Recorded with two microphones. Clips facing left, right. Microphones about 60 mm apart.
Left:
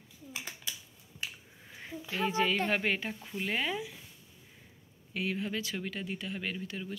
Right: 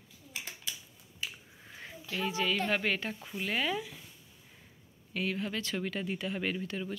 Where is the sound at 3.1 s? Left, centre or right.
Centre.